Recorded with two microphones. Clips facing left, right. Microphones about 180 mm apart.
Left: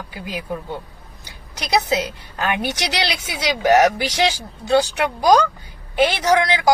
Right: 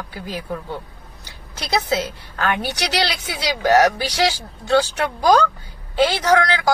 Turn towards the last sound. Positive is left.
turn(degrees=15)  # may be behind; listen again after turning